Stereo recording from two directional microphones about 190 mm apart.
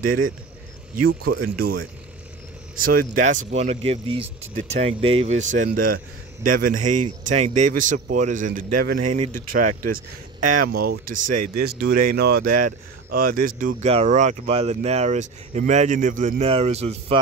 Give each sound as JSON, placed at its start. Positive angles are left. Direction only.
{"t": 1.2, "sound": "speech", "side_deg": -55}
{"t": 2.8, "sound": "a man's voice", "side_deg": -45}